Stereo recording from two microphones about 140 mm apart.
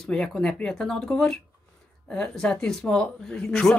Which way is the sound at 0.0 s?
5° left (ahead or behind).